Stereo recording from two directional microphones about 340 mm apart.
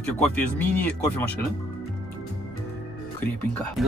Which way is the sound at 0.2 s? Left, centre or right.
Centre.